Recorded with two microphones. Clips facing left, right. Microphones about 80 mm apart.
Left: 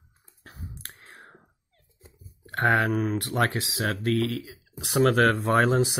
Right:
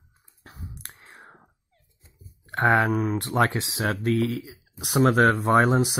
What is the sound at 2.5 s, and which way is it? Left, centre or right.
Speech, right.